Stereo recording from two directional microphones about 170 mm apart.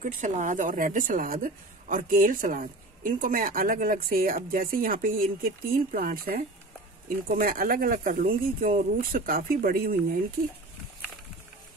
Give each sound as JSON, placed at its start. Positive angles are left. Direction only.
{"t": 0.0, "sound": "a woman's voice", "side_deg": -50}